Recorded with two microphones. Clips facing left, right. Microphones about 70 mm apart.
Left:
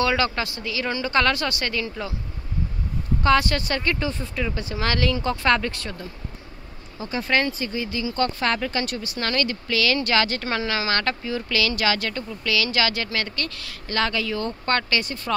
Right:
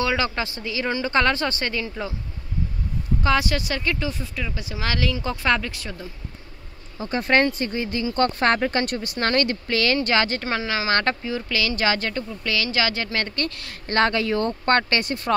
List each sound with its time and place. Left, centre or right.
0.0 s speech: centre
3.2 s speech: centre
7.0 s a woman's voice: right